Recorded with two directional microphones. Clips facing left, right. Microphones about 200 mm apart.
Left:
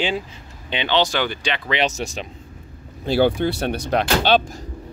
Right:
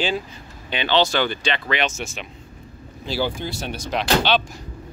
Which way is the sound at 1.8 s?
40° left (ahead or behind).